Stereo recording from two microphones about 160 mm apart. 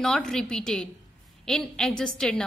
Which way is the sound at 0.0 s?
Centre (ahead or behind).